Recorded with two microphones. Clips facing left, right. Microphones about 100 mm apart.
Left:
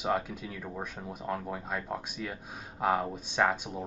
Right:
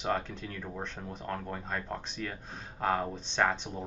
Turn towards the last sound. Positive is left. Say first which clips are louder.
# left 1 dB
turn(degrees=10)  # may be behind; listen again after turning